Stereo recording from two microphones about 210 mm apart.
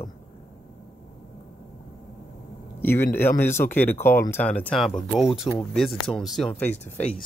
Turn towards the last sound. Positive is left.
turn(degrees=30)  # may be behind; listen again after turning